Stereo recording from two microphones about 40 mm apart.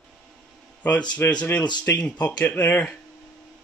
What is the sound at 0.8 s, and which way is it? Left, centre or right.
Speech, left.